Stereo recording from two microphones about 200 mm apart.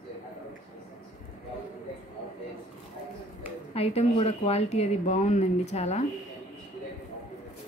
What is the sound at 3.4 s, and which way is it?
Speech, 30° left (ahead or behind).